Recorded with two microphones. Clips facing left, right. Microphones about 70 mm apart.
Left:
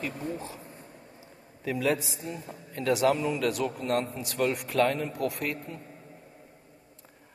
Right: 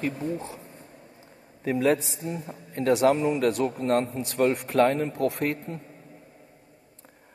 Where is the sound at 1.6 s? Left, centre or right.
Right.